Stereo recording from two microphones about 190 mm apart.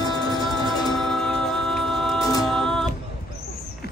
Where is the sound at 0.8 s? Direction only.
Centre (ahead or behind).